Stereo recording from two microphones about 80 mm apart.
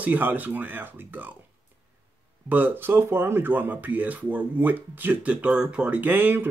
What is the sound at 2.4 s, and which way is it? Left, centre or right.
Speech, right.